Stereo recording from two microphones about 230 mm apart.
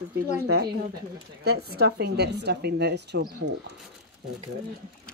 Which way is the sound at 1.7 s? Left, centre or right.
Right.